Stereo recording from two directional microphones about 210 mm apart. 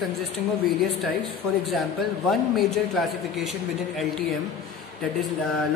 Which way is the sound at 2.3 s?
Centre (ahead or behind).